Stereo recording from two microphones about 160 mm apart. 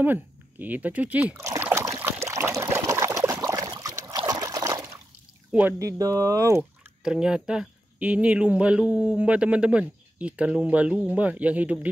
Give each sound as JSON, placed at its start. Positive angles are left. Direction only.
{"t": 0.0, "sound": "a sound", "side_deg": -10}
{"t": 5.5, "sound": "speech", "side_deg": -10}
{"t": 5.8, "sound": "speech", "side_deg": -20}
{"t": 7.0, "sound": "speech", "side_deg": -5}